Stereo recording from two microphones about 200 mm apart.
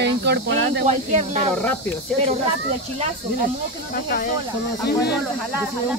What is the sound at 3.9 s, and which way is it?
Speech, 45° left (ahead or behind).